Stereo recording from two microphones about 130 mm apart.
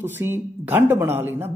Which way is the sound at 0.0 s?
15° right (ahead or behind).